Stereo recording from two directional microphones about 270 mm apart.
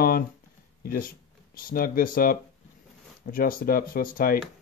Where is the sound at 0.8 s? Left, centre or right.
Left.